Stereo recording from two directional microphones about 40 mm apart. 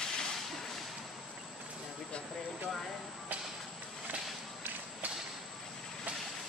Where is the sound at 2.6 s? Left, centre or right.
Centre.